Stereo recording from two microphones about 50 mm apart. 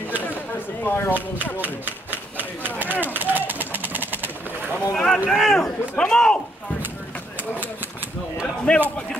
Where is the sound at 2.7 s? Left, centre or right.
Left.